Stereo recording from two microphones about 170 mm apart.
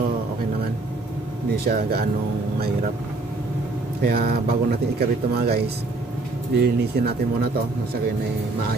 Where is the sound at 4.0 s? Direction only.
65° right (ahead or behind).